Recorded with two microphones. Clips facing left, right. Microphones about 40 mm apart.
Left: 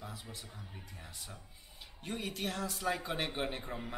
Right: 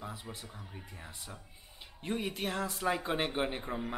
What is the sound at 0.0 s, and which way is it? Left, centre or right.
A man's voice, right.